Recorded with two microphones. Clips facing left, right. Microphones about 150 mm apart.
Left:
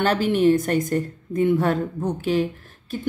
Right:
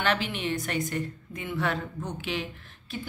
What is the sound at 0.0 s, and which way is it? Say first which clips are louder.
Speech: left 10 dB; 45° left (ahead or behind).